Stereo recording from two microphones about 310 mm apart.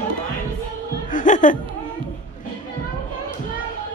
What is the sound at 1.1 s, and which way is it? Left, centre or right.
Speech, left.